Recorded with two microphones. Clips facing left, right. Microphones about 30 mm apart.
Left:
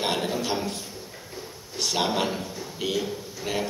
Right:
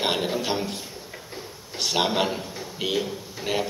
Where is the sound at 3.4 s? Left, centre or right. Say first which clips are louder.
Right 3 dB; centre.